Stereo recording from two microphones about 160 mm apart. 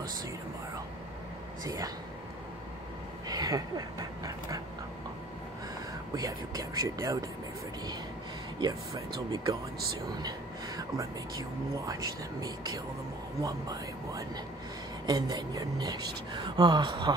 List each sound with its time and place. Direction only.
1.6 s speech: 25° right (ahead or behind)
3.3 s dog: 25° right (ahead or behind)
6.1 s speech: 20° right (ahead or behind)
8.5 s speech: 25° right (ahead or behind)
11.8 s speech: 20° right (ahead or behind)